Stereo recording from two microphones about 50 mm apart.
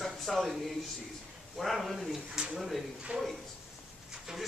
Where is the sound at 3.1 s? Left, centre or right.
Right.